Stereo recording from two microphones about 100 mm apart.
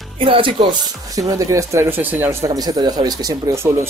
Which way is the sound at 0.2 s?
60° right (ahead or behind).